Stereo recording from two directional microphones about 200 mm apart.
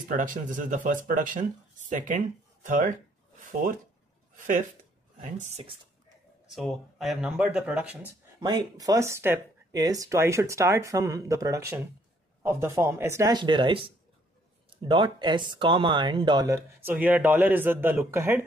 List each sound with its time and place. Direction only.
0.1 s speech: 40° right (ahead or behind)
4.4 s speech: 40° right (ahead or behind)
5.4 s speech: 30° right (ahead or behind)
6.5 s speech: centre (ahead or behind)
8.4 s speech: 20° right (ahead or behind)